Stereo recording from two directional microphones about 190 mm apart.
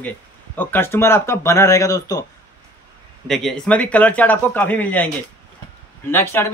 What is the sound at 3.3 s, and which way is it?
A man's voice, centre (ahead or behind).